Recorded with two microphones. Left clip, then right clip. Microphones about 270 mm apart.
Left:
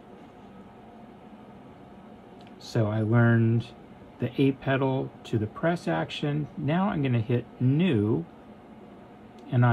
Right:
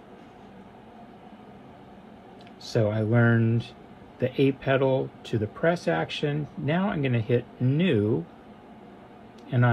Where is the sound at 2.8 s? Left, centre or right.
Centre.